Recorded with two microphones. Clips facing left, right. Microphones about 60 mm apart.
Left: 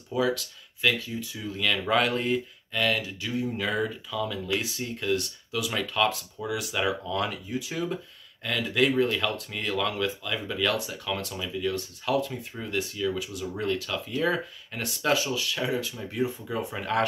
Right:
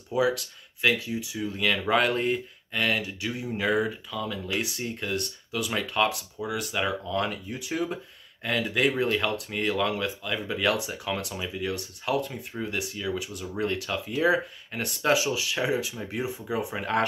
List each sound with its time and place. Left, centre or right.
0.1 s speech: centre
10.5 s speech: centre
11.7 s speech: centre
12.9 s speech: centre
13.2 s speech: centre
13.8 s speech: centre